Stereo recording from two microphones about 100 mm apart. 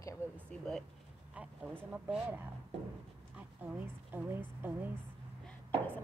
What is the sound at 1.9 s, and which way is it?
Speech, 20° right (ahead or behind).